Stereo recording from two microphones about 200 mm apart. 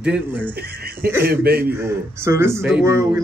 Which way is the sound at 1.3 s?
50° right (ahead or behind).